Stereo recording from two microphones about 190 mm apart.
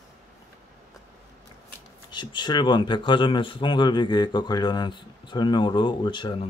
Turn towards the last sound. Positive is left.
turn(degrees=25)  # may be behind; listen again after turning